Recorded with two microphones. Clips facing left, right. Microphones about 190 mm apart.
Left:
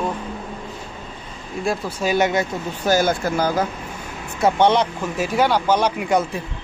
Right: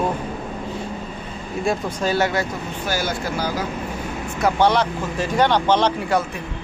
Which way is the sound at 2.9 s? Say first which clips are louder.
Left 7 dB; 50° left (ahead or behind).